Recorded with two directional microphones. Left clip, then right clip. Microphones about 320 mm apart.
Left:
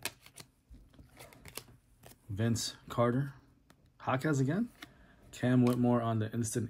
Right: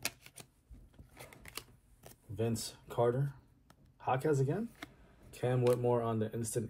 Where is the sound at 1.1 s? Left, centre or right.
Centre.